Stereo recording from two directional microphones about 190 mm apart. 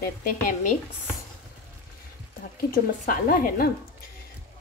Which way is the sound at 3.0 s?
45° left (ahead or behind).